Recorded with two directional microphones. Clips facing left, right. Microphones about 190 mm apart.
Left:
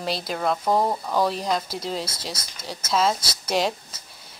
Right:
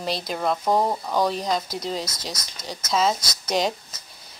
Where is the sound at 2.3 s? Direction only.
30° left (ahead or behind).